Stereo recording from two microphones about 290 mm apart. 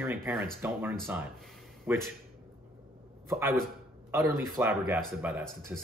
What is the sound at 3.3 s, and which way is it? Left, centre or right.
Speech, centre.